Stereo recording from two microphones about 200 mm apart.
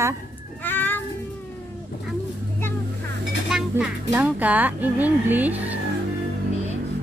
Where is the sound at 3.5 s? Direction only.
5° right (ahead or behind).